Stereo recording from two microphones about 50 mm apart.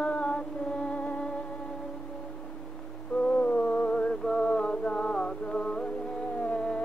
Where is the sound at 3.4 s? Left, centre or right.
Left.